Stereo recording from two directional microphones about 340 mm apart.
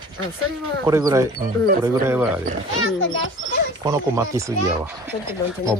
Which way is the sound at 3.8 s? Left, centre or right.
Centre.